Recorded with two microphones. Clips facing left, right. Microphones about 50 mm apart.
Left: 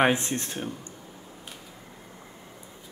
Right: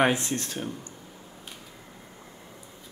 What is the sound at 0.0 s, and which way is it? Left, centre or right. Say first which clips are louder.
Speech: left 1 dB; left.